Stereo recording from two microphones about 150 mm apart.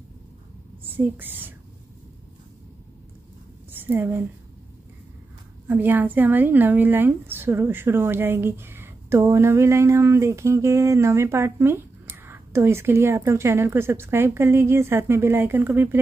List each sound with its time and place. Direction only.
0.8 s a woman's voice: 15° right (ahead or behind)
3.7 s a woman's voice: 15° right (ahead or behind)
5.7 s a woman's voice: 10° right (ahead or behind)